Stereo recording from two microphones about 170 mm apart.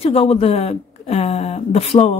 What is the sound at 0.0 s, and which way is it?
Speech, 35° left (ahead or behind).